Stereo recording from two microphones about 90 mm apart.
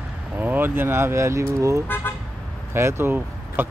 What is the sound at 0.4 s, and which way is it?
Speech, 20° right (ahead or behind).